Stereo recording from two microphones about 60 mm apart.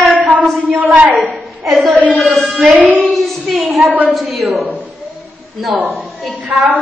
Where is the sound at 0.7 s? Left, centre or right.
Right.